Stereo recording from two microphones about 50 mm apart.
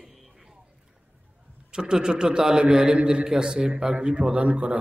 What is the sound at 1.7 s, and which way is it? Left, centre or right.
A man's voice, centre.